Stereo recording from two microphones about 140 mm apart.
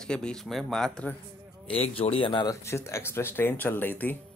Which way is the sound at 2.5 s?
20° left (ahead or behind).